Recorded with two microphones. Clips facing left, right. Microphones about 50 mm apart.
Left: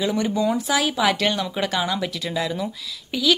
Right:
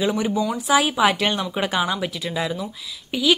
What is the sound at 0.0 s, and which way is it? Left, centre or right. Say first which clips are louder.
A woman's voice: even; centre.